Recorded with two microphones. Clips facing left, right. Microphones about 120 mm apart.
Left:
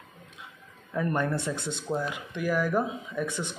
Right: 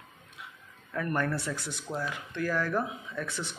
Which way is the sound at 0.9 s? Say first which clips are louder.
Left 3 dB; 20° left (ahead or behind).